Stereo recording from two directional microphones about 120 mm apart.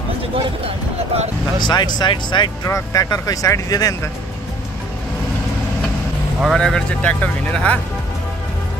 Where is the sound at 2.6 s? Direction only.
25° left (ahead or behind).